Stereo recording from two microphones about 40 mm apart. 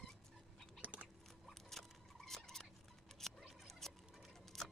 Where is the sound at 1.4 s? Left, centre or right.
Centre.